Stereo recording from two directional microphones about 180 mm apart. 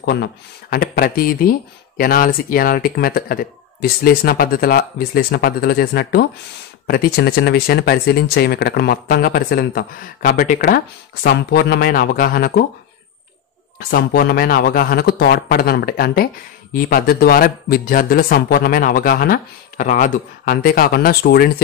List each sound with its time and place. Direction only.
0.0 s speech: 65° left (ahead or behind)
13.7 s speech: 55° left (ahead or behind)